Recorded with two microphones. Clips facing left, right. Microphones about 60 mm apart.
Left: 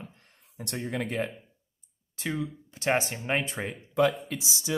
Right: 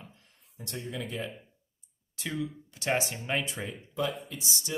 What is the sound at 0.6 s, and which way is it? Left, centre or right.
Speech, left.